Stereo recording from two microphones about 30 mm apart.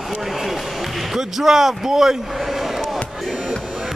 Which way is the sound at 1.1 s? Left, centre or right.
Centre.